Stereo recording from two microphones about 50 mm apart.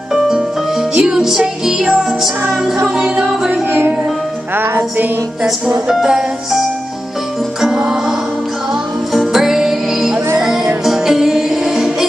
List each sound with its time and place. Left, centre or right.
0.1 s music: centre
3.4 s music: right
5.9 s music: centre
7.7 s music: centre
9.1 s music: centre